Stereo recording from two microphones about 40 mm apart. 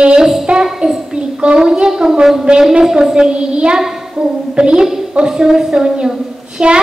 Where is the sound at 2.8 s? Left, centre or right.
Centre.